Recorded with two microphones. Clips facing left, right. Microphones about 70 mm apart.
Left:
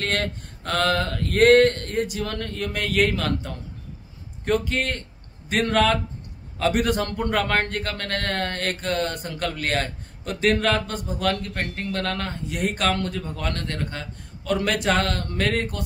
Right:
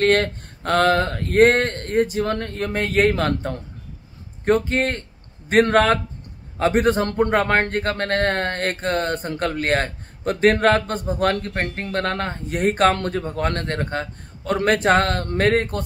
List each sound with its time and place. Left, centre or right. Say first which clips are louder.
0.0 s a man's voice: right 8 dB; right